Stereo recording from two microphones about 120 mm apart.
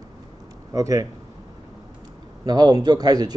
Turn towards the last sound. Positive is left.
turn(degrees=-35)  # may be behind; listen again after turning